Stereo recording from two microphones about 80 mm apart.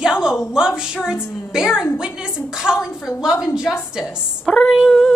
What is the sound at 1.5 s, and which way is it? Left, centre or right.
A woman's voice, centre.